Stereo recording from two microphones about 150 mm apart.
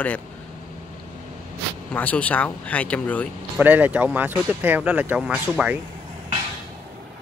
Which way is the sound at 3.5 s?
10° right (ahead or behind).